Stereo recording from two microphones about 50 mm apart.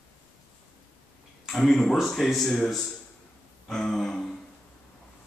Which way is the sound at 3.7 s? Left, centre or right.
Centre.